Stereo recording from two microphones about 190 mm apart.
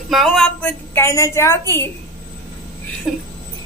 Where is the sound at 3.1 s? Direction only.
Centre (ahead or behind).